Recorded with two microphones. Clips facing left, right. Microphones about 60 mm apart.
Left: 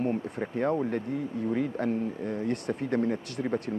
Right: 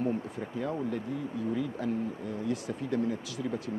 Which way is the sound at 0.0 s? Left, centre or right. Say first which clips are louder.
Left 2 dB; left.